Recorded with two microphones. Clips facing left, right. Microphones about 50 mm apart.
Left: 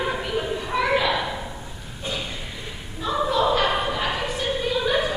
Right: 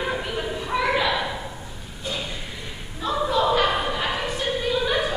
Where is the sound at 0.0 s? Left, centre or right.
Centre.